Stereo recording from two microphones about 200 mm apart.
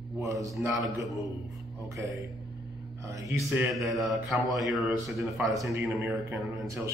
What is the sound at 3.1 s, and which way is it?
Speech, 15° right (ahead or behind).